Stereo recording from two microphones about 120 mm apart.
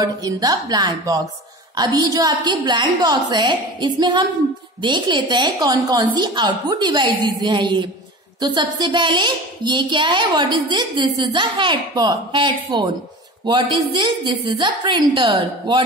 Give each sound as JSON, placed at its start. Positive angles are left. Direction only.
{"t": 0.0, "sound": "a woman's voice", "side_deg": -35}